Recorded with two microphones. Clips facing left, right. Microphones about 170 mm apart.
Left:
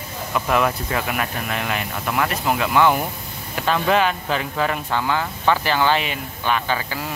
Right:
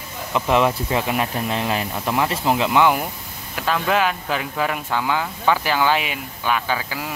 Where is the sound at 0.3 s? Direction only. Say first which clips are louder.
Right 2 dB; 25° right (ahead or behind).